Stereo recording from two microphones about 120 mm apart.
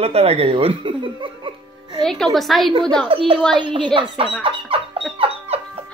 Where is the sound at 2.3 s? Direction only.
Centre (ahead or behind).